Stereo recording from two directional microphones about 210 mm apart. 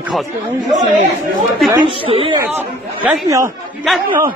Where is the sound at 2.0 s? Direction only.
25° right (ahead or behind).